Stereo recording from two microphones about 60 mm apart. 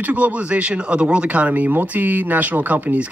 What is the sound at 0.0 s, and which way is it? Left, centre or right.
Speech, right.